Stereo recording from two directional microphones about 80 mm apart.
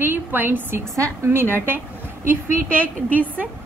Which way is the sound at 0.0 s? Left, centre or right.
Right.